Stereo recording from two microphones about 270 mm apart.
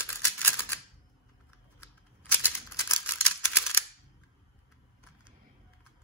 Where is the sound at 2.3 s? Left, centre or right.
Centre.